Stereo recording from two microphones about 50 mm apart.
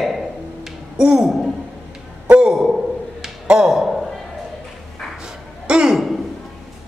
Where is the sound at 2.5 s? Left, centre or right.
Centre.